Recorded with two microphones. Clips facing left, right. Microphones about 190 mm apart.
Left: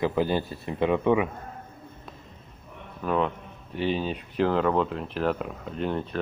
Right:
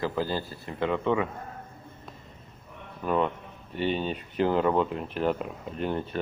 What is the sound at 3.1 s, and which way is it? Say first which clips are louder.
Speech: even; centre (ahead or behind).